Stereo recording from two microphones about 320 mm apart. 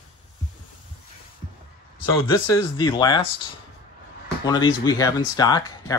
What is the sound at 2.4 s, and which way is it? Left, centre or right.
Speech, centre.